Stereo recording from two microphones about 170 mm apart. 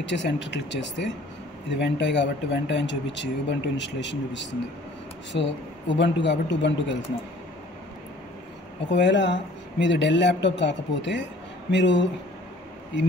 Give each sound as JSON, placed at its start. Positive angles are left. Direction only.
{"t": 0.0, "sound": "speech", "side_deg": 90}
{"t": 5.3, "sound": "speech", "side_deg": 70}
{"t": 5.9, "sound": "speech", "side_deg": 90}
{"t": 8.9, "sound": "speech", "side_deg": 90}